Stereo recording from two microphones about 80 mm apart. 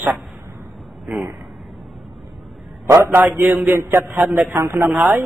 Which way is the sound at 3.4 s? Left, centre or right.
Right.